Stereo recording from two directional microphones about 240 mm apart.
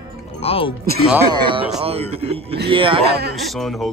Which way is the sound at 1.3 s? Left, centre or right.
Right.